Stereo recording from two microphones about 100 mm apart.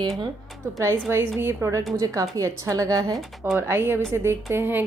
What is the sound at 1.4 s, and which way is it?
A woman's voice, 25° right (ahead or behind).